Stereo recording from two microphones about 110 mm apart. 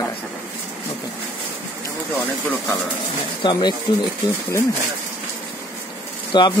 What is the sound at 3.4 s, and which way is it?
Speech, 45° left (ahead or behind).